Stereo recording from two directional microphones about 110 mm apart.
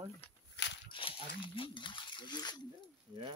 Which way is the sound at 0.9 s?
50° left (ahead or behind).